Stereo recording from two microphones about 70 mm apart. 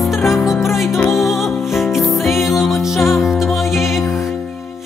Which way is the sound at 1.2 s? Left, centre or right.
Centre.